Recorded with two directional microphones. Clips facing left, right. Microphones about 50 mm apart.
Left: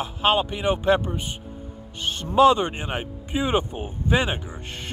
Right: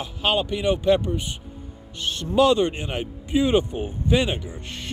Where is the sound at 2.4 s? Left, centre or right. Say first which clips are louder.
Left 1 dB; left.